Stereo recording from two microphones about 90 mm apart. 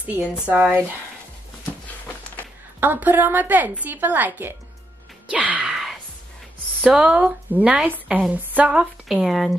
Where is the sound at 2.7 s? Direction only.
20° right (ahead or behind).